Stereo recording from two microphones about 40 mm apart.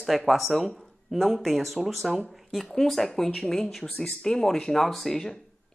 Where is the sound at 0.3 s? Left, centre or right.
Centre.